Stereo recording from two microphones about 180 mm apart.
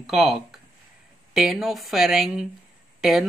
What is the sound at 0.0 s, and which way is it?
Speech, centre (ahead or behind).